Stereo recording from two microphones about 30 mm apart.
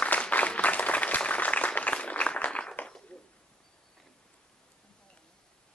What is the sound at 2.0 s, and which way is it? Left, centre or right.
Applause, left.